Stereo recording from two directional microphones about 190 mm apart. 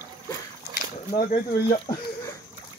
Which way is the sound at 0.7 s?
45° left (ahead or behind).